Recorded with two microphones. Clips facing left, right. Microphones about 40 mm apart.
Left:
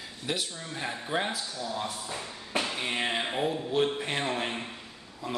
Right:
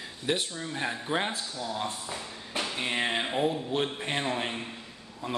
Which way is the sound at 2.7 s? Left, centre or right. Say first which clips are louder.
Right 1 dB; centre.